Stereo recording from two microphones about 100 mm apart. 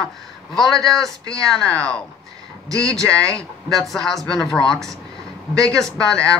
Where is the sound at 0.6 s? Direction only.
5° left (ahead or behind).